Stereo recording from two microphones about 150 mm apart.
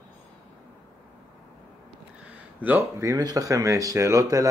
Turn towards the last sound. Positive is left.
turn(degrees=-20)  # may be behind; listen again after turning